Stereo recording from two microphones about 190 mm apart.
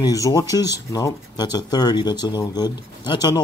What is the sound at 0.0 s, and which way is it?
Speech, 20° left (ahead or behind).